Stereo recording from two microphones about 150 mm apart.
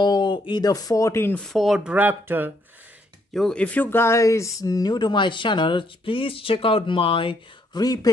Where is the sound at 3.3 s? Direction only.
5° left (ahead or behind); by 8.1 s 25° left (ahead or behind).